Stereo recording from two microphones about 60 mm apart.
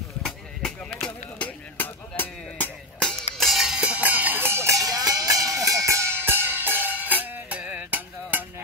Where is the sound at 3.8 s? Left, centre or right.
Right.